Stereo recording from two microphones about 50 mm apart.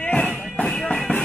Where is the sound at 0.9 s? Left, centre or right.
Centre.